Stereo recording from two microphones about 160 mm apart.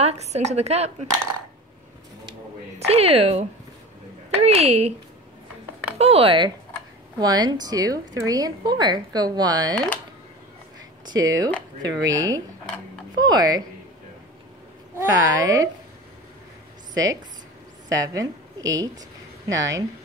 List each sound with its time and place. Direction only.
0.0 s a woman's voice: 40° right (ahead or behind)
2.9 s a woman's voice: 40° right (ahead or behind)
5.9 s a woman's voice: 40° right (ahead or behind)
11.1 s a woman's voice: 25° right (ahead or behind)
15.0 s a woman's voice: 20° right (ahead or behind)
16.9 s a woman's voice: 25° right (ahead or behind)